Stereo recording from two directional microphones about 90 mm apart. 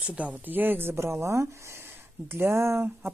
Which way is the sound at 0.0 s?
15° right (ahead or behind).